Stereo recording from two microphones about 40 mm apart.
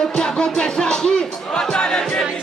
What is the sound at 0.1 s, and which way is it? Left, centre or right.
Music, left.